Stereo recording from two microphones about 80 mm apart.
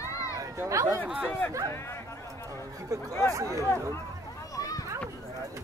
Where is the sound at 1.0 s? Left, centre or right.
Centre.